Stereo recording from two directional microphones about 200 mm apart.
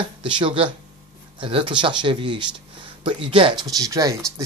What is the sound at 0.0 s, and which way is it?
Speech, 25° right (ahead or behind).